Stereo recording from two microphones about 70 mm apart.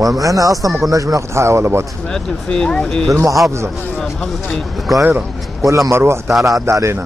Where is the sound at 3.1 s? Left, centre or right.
Right.